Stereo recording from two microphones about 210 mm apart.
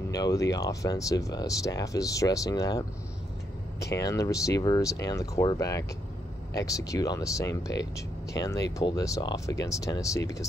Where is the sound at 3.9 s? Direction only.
15° left (ahead or behind).